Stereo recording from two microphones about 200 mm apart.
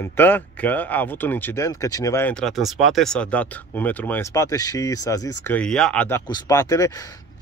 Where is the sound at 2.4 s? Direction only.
Centre (ahead or behind).